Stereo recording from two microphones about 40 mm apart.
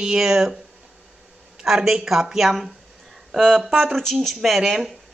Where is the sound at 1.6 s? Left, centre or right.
Centre.